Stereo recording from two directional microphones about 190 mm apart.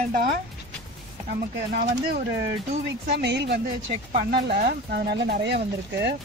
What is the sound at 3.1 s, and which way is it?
Speech, 65° right (ahead or behind).